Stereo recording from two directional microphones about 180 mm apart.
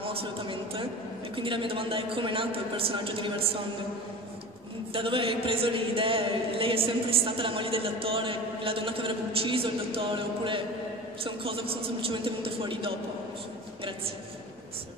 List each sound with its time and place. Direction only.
0.0 s a man's voice: 30° right (ahead or behind)
4.9 s a man's voice: 30° right (ahead or behind)